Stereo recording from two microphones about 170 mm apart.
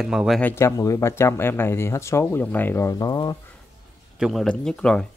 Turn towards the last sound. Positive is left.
turn(degrees=5)  # may be behind; listen again after turning